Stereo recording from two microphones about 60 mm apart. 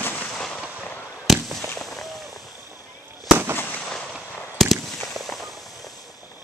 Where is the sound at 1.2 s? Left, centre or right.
Centre.